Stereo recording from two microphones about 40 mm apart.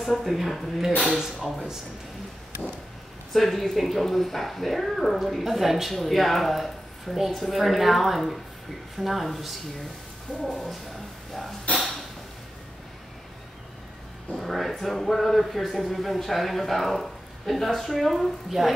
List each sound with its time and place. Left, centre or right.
0.0 s speech: centre
3.3 s speech: centre
10.4 s speech: centre
11.7 s a sound: left
14.3 s speech: centre